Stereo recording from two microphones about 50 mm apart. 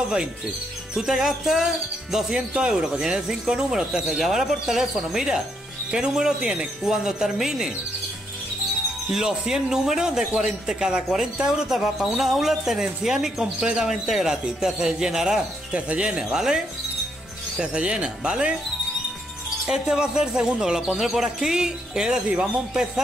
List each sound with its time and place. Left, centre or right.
0.9 s a man's voice: centre
2.5 s a man's voice: centre
9.1 s a man's voice: centre
17.6 s a man's voice: right
19.7 s a man's voice: centre